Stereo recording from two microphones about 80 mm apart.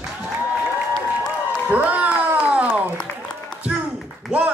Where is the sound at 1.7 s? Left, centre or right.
Centre.